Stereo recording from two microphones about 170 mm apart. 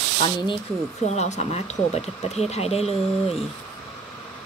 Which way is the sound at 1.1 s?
40° left (ahead or behind).